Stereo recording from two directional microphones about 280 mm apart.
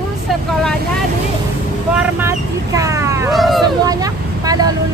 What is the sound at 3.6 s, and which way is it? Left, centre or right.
Speech, centre.